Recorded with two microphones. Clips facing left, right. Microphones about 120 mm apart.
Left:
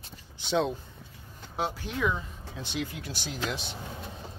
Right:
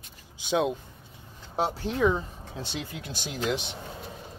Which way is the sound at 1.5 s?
30° right (ahead or behind).